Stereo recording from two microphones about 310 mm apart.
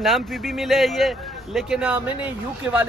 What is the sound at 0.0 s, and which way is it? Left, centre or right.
Speech, centre.